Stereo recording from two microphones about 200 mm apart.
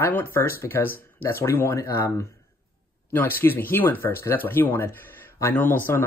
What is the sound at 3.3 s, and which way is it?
Speech, 10° left (ahead or behind).